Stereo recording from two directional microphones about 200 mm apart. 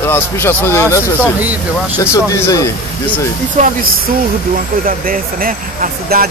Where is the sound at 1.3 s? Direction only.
10° right (ahead or behind).